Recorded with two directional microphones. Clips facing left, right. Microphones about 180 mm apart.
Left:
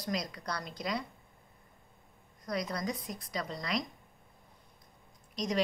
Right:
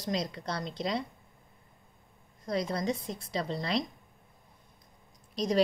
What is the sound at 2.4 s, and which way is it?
A woman's voice, 25° right (ahead or behind).